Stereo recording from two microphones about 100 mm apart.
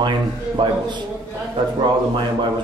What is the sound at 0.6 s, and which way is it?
Speech, 50° right (ahead or behind).